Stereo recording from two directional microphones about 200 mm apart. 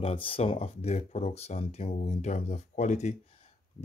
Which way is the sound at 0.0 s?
25° left (ahead or behind).